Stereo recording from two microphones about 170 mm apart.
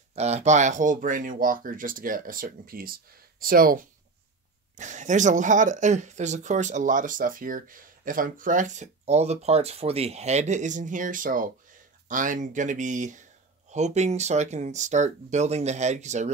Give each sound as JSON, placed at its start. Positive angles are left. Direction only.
{"t": 0.1, "sound": "speech", "side_deg": -40}
{"t": 4.7, "sound": "speech", "side_deg": -45}